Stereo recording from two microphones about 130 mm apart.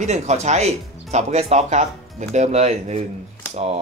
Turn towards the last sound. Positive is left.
turn(degrees=-50)  # may be behind; listen again after turning